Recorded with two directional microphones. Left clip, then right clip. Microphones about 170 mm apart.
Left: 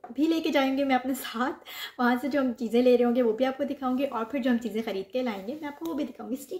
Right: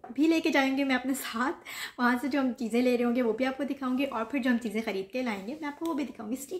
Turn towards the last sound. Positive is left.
turn(degrees=-15)  # may be behind; listen again after turning